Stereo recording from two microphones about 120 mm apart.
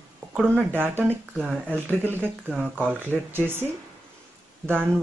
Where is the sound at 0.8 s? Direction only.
15° right (ahead or behind).